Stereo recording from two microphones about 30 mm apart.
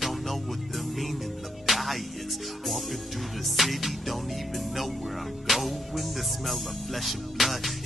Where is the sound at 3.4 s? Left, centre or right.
Centre.